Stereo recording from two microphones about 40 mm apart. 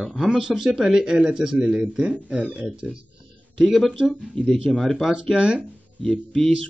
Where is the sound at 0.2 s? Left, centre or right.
Centre.